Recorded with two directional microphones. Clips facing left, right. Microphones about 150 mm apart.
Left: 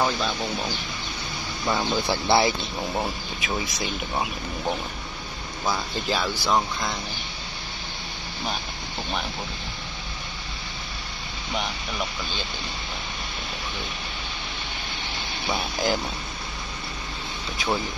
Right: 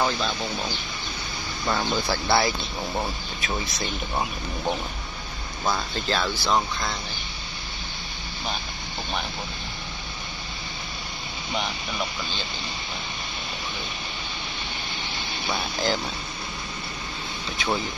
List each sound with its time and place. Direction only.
0.0 s speech: 5° left (ahead or behind)
1.7 s speech: 5° left (ahead or behind)
2.0 s speech: 20° left (ahead or behind)
2.9 s speech: 10° left (ahead or behind)
15.5 s speech: 15° left (ahead or behind)